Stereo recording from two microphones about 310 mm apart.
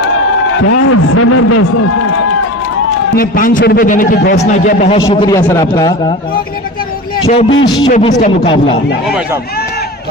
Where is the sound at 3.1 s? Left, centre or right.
Left.